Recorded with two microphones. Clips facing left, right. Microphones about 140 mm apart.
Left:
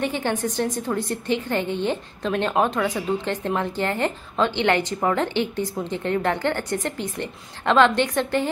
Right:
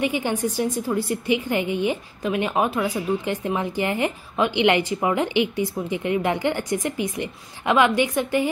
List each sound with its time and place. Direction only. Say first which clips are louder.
0.0 s a woman's voice: right 1 dB; 10° right (ahead or behind)